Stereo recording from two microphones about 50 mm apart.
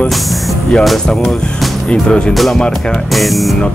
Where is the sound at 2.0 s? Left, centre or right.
Centre.